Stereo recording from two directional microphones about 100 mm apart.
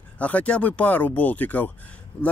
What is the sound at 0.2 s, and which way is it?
Speech, 15° left (ahead or behind).